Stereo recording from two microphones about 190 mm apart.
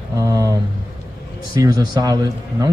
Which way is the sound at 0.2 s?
15° right (ahead or behind).